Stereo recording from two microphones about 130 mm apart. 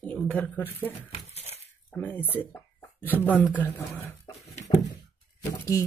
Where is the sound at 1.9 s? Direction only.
15° left (ahead or behind).